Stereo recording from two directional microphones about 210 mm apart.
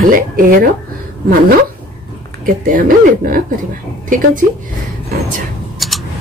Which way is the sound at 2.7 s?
45° right (ahead or behind).